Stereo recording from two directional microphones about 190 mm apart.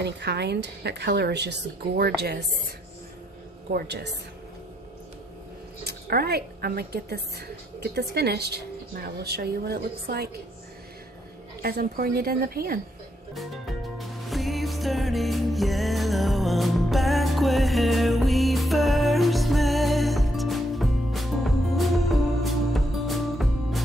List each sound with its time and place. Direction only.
0.0 s a woman's voice: 60° right (ahead or behind)
3.7 s a woman's voice: 60° right (ahead or behind)
5.9 s a woman's voice: 55° right (ahead or behind)
11.6 s a woman's voice: 50° right (ahead or behind)
13.3 s music: centre (ahead or behind)